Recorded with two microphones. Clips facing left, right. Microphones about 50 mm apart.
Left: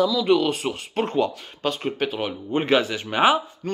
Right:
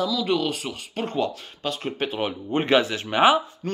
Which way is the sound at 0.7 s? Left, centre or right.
Left.